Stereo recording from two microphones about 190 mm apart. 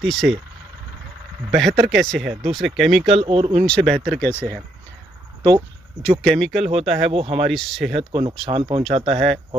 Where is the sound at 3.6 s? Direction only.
5° left (ahead or behind).